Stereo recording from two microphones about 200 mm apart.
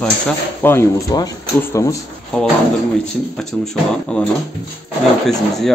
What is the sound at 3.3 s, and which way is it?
Speech, centre (ahead or behind).